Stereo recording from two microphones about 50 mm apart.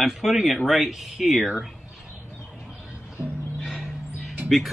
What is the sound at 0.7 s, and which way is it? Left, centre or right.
Speech, centre.